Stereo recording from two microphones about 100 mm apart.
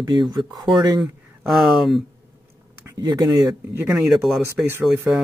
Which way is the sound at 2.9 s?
40° right (ahead or behind).